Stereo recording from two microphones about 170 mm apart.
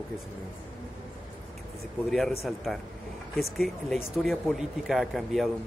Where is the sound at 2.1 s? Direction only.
Centre (ahead or behind).